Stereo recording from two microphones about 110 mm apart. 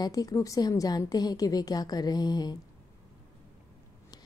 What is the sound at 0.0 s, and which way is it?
A woman's voice, 35° left (ahead or behind).